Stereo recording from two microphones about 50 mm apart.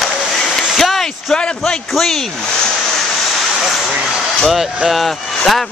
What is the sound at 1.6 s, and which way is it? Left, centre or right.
Speech, centre.